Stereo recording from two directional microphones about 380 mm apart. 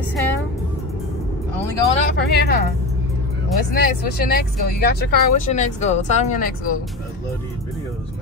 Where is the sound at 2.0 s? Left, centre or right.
Left.